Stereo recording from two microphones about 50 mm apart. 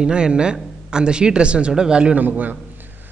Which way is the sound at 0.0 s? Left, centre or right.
Centre.